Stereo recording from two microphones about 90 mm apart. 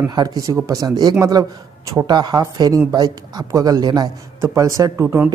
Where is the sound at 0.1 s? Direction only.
50° right (ahead or behind).